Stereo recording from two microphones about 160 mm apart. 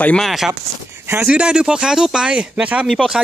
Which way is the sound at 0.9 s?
15° right (ahead or behind).